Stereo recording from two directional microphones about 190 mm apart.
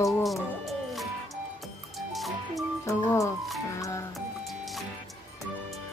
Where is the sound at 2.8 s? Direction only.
15° left (ahead or behind).